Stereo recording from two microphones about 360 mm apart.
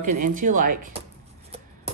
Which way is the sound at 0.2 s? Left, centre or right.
Right.